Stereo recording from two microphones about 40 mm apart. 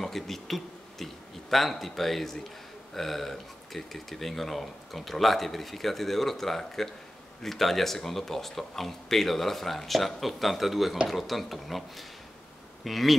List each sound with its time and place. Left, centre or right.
0.0 s a sound: centre
2.9 s speech: centre
12.8 s speech: centre